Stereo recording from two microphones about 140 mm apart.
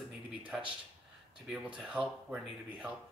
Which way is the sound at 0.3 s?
10° right (ahead or behind).